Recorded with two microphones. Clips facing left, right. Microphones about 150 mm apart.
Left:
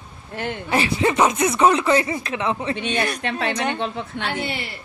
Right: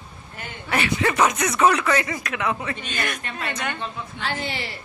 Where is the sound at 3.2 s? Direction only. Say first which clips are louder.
Left 7 dB; 80° left.